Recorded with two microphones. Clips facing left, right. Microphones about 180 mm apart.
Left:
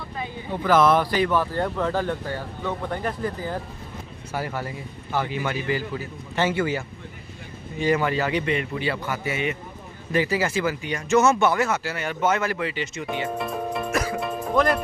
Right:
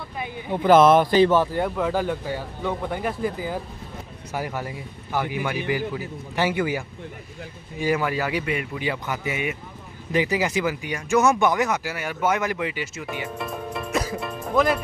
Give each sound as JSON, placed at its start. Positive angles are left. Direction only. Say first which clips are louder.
{"t": 0.7, "sound": "speech", "louder": "right 4 dB", "side_deg": -25}
{"t": 1.5, "sound": "speech", "louder": "right 1 dB", "side_deg": -10}
{"t": 7.8, "sound": "speech", "louder": "left 1 dB", "side_deg": -10}
{"t": 14.2, "sound": "music", "louder": "even", "side_deg": 0}